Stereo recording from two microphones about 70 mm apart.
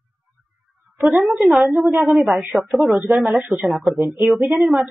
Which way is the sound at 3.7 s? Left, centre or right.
Centre.